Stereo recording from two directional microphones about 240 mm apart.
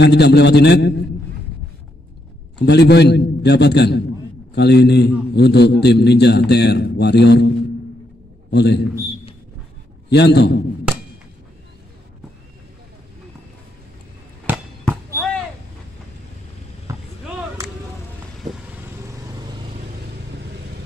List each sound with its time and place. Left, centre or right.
0.0 s a man's voice: left
2.6 s a man's voice: left
10.0 s a man's voice: left
14.9 s basketball bounce: centre